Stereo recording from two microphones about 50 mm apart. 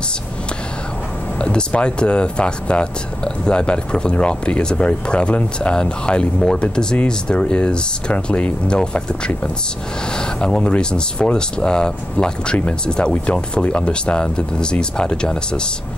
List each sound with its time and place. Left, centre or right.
1.4 s speech: left
10.1 s speech: centre